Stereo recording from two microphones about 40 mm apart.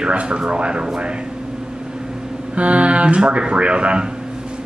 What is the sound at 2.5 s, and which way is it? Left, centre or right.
Speech, right.